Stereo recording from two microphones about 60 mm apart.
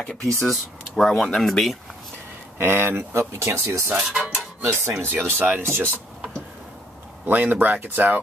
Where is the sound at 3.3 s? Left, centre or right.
Right.